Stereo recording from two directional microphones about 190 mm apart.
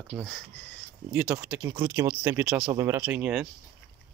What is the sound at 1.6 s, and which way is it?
Speech, 15° right (ahead or behind).